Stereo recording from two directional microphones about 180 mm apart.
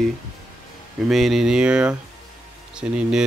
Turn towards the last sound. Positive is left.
turn(degrees=-5)  # may be behind; listen again after turning